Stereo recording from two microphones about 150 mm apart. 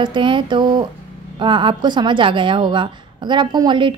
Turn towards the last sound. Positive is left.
turn(degrees=-30)  # may be behind; listen again after turning